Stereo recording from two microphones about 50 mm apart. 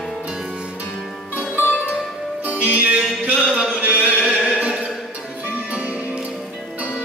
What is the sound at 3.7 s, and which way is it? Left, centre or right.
Chant, right.